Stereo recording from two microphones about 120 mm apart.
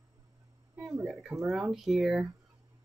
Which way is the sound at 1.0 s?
5° right (ahead or behind).